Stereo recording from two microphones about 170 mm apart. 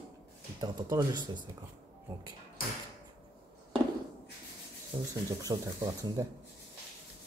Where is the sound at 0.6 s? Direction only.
25° right (ahead or behind).